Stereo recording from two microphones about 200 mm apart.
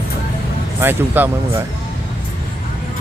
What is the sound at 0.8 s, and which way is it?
Speech, 10° right (ahead or behind).